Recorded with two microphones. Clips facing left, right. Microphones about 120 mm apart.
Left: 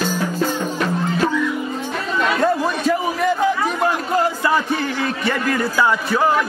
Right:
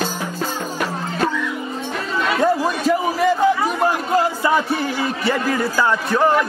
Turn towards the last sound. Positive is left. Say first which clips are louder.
# right 1 dB
turn(degrees=0)  # may be behind; listen again after turning